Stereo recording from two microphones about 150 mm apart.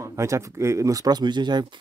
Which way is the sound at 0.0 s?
20° right (ahead or behind).